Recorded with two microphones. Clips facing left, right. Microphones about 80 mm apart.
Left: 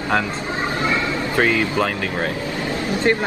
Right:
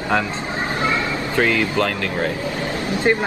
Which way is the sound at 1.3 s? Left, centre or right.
Centre.